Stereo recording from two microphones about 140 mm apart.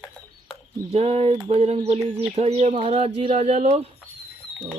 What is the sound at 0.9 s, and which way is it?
Speech, 45° right (ahead or behind).